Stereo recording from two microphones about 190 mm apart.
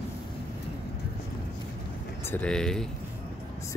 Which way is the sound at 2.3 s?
5° left (ahead or behind).